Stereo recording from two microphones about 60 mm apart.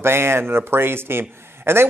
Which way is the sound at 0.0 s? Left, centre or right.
Right.